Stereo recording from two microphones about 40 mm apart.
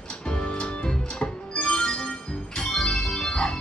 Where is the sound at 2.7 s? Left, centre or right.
Centre.